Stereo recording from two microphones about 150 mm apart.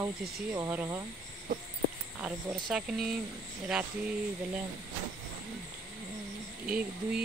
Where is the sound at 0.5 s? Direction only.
15° right (ahead or behind).